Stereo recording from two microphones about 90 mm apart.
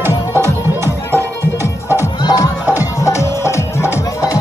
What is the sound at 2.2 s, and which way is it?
Music, 50° left (ahead or behind).